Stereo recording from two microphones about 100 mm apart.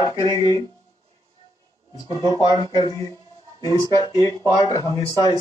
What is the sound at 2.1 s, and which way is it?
Speech, 45° left (ahead or behind).